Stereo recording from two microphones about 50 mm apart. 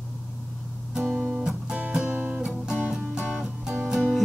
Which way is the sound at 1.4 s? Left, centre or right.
Centre.